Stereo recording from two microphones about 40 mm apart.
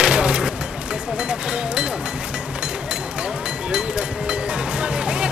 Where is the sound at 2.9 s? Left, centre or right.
Right.